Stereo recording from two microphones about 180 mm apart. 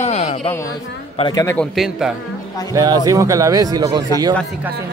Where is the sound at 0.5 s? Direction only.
15° left (ahead or behind).